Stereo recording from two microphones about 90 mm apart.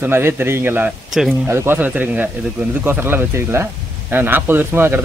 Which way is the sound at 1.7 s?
20° right (ahead or behind).